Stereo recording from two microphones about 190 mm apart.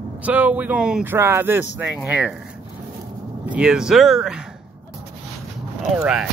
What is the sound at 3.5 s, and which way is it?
Speech, 5° right (ahead or behind).